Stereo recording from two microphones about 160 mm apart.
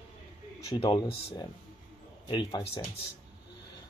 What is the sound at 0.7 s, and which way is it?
Speech, 30° left (ahead or behind).